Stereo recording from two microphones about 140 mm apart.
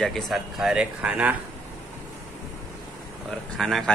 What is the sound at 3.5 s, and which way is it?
Speech, centre (ahead or behind).